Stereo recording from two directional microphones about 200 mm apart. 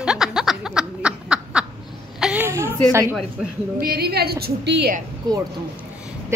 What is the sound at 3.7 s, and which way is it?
A woman's voice, 50° right (ahead or behind).